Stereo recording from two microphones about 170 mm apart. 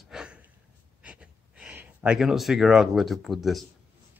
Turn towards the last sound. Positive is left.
turn(degrees=0)  # may be behind; listen again after turning